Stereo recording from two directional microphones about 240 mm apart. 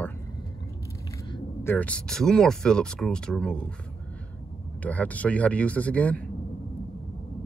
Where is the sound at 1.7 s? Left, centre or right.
Centre.